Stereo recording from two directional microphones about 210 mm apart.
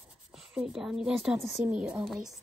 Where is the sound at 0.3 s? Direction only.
5° right (ahead or behind).